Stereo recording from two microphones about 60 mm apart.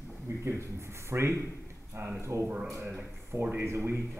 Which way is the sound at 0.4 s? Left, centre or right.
Right.